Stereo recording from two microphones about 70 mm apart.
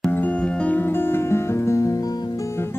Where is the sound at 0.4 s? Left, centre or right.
Left.